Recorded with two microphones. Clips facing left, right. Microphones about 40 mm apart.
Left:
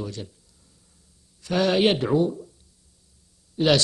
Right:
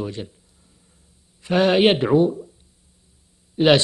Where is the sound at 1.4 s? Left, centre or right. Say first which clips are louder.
Right 4 dB; right.